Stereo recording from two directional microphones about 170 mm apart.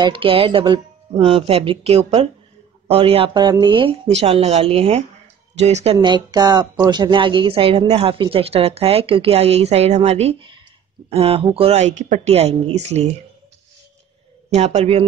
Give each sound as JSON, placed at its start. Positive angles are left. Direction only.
{"t": 0.0, "sound": "a woman's voice", "side_deg": -30}
{"t": 5.9, "sound": "a woman's voice", "side_deg": -25}
{"t": 14.5, "sound": "a woman's voice", "side_deg": -40}